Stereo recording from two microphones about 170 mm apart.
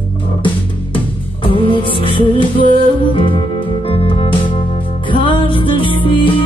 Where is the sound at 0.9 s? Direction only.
30° left (ahead or behind).